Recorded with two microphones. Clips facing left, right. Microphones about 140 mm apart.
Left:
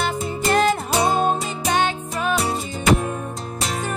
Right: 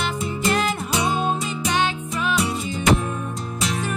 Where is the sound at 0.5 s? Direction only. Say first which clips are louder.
Left 5 dB; 40° left (ahead or behind).